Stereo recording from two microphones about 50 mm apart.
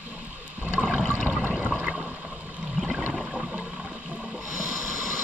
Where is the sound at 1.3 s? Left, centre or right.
Centre.